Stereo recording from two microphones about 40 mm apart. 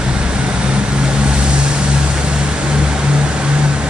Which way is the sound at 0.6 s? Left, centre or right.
Right.